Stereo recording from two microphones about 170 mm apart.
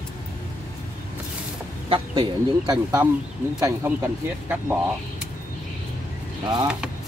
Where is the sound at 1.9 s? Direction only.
25° right (ahead or behind).